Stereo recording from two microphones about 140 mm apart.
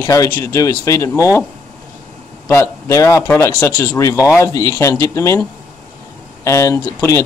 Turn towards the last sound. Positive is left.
turn(degrees=20)  # may be behind; listen again after turning